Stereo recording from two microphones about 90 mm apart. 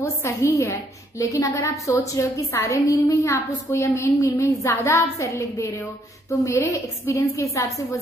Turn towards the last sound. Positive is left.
turn(degrees=35)  # may be behind; listen again after turning